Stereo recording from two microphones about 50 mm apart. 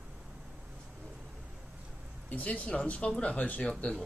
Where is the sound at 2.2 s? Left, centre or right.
Left.